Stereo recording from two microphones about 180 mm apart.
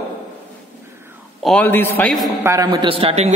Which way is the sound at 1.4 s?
5° left (ahead or behind).